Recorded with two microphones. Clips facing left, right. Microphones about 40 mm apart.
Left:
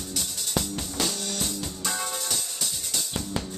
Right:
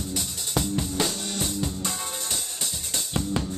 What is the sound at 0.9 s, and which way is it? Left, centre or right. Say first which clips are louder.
Music: right 2 dB; centre.